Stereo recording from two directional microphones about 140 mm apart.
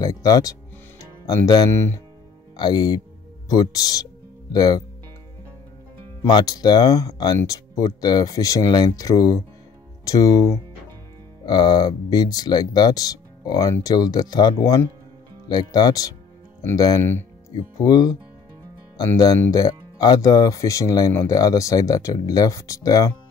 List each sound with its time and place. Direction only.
0.0 s speech: 25° left (ahead or behind)
2.5 s speech: 30° left (ahead or behind)
6.2 s speech: 30° left (ahead or behind)